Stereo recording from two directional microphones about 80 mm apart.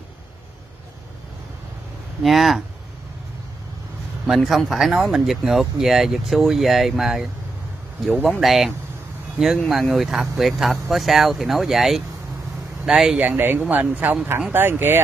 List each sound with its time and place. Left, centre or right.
2.2 s speech: centre
4.3 s speech: centre
13.2 s speech: right